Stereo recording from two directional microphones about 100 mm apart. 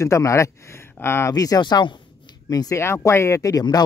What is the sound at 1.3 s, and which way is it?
Speech, 40° left (ahead or behind).